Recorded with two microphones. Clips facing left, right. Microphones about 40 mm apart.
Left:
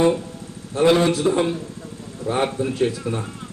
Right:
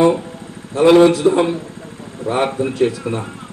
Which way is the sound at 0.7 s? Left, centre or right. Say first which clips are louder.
Right 7 dB; right.